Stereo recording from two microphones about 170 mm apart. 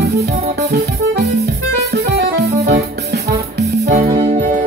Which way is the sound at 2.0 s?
75° right (ahead or behind).